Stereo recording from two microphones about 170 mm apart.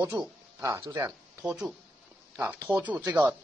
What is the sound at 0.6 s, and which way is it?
Speech, 20° right (ahead or behind).